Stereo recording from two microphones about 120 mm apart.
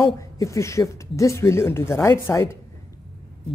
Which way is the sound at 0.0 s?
25° left (ahead or behind).